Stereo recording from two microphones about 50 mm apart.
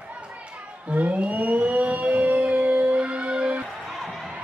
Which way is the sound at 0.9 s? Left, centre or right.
Right.